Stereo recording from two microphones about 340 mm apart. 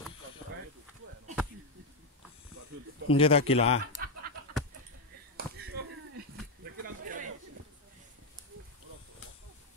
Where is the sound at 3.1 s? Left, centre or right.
Centre.